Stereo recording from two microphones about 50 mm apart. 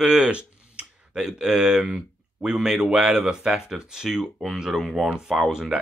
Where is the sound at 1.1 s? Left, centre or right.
Centre.